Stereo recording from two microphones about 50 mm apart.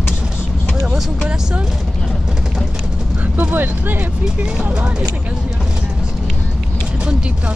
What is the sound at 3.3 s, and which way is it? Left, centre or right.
Speech, right.